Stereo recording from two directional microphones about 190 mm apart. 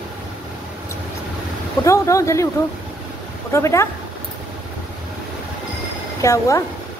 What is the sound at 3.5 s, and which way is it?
Speech, 15° left (ahead or behind).